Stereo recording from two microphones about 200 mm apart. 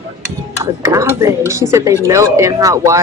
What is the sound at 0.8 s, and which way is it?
Speech, 15° right (ahead or behind).